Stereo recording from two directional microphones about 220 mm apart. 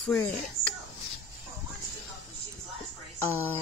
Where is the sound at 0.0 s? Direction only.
5° left (ahead or behind).